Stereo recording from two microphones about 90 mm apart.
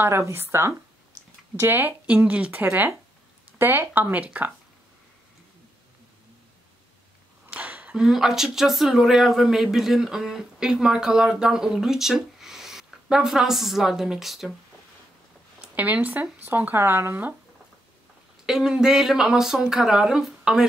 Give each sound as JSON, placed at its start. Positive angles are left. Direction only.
{"t": 0.0, "sound": "speech", "side_deg": -25}
{"t": 7.5, "sound": "speech", "side_deg": -15}
{"t": 15.6, "sound": "speech", "side_deg": -20}
{"t": 18.4, "sound": "speech", "side_deg": -5}